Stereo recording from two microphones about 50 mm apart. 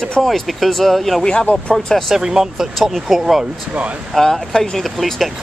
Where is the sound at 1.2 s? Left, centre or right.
Centre.